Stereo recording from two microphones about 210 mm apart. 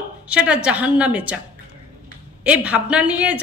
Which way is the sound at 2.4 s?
5° right (ahead or behind).